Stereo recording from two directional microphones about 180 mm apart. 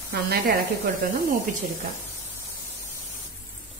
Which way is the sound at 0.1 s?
65° right (ahead or behind).